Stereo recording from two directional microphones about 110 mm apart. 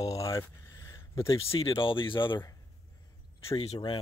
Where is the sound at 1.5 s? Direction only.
55° left (ahead or behind).